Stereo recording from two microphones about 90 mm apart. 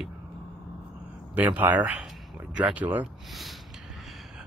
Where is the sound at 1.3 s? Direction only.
20° right (ahead or behind).